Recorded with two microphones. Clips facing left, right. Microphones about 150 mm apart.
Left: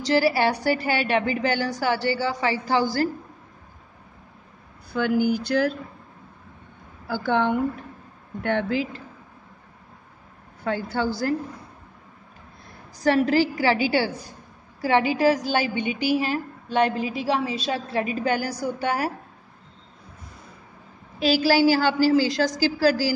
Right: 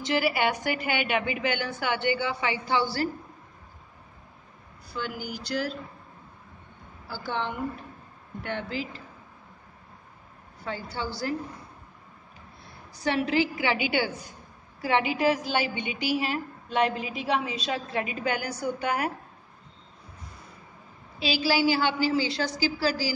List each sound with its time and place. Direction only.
0.0 s a woman's voice: 35° left (ahead or behind)
4.9 s a woman's voice: 55° left (ahead or behind)
7.2 s speech: 55° left (ahead or behind)
10.6 s a woman's voice: 50° left (ahead or behind)
13.0 s a woman's voice: 40° left (ahead or behind)
21.2 s a woman's voice: 45° left (ahead or behind)